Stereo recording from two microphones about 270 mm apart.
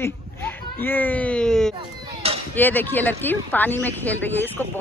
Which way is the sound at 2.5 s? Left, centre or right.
Centre.